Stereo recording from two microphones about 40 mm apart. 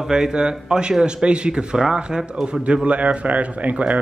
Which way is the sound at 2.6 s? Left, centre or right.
Right.